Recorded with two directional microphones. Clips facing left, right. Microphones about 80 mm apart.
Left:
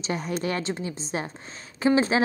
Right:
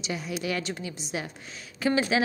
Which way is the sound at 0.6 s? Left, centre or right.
Left.